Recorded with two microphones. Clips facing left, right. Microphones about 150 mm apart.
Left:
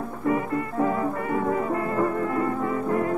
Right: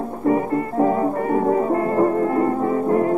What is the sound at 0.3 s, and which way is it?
Music, 35° right (ahead or behind).